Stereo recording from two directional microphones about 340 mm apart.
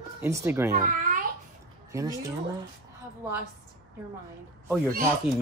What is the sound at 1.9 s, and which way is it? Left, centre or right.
Speech, centre.